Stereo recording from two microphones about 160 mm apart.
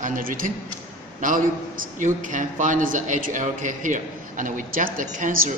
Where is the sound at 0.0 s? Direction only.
55° right (ahead or behind).